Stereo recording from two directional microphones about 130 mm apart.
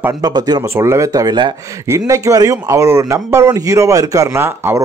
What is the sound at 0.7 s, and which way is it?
Speech, 20° right (ahead or behind).